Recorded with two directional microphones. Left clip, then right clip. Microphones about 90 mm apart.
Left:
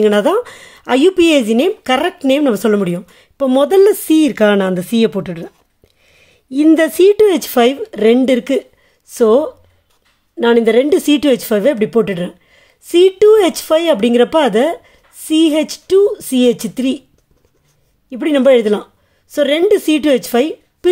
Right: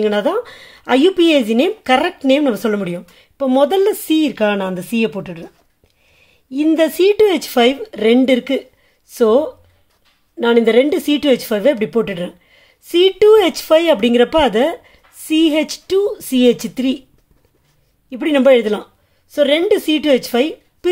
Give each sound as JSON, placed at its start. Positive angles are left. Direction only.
{"t": 0.0, "sound": "a woman's voice", "side_deg": 40}
{"t": 0.7, "sound": "a woman's voice", "side_deg": 30}
{"t": 1.8, "sound": "speech", "side_deg": 25}
{"t": 2.1, "sound": "speech", "side_deg": 40}
{"t": 6.1, "sound": "a woman's voice", "side_deg": 65}
{"t": 18.1, "sound": "speech", "side_deg": 25}
{"t": 19.3, "sound": "speech", "side_deg": 50}